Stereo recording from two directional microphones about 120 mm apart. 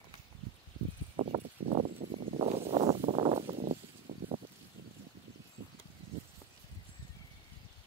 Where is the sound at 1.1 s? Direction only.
60° right (ahead or behind).